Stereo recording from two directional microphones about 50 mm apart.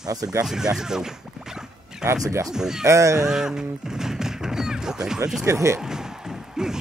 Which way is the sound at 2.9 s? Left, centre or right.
Right.